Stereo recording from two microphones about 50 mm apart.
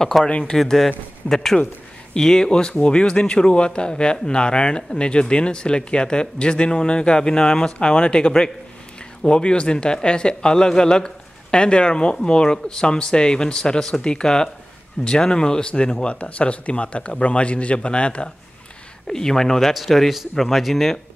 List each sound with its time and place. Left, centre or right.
0.2 s speech: left
0.6 s speech: centre
19.0 s a man's voice: centre